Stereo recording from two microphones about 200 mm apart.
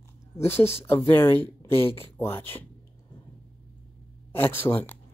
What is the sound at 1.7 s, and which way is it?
Speech, 10° left (ahead or behind).